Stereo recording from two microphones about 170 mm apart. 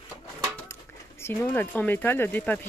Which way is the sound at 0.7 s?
15° left (ahead or behind).